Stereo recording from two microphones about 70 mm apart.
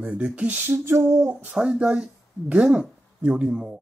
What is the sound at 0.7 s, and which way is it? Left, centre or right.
Speech, right.